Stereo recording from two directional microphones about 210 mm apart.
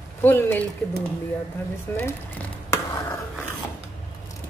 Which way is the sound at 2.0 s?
10° left (ahead or behind).